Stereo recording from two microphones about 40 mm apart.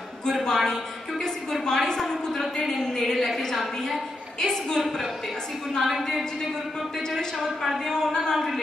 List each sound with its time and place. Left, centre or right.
0.2 s a man's voice: centre
5.8 s a woman's voice: centre
7.6 s a woman's voice: centre
7.9 s a woman's voice: centre